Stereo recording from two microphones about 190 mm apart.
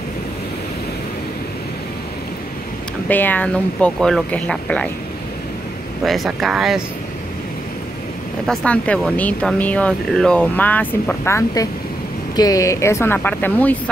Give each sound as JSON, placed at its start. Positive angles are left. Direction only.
{"t": 3.1, "sound": "speech", "side_deg": 10}
{"t": 6.0, "sound": "speech", "side_deg": 0}
{"t": 8.5, "sound": "speech", "side_deg": 5}